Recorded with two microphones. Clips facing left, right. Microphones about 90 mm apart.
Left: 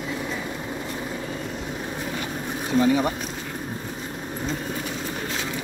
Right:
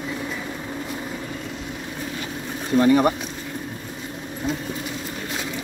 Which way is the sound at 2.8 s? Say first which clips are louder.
Right 4 dB; 60° right (ahead or behind).